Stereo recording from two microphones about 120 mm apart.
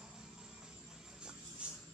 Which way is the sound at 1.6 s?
10° right (ahead or behind).